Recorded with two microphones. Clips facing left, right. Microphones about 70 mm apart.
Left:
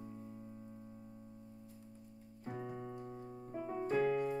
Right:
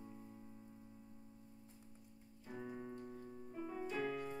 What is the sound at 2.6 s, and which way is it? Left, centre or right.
Piano, left.